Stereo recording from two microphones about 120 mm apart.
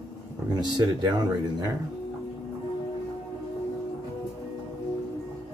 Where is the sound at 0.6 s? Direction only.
35° right (ahead or behind).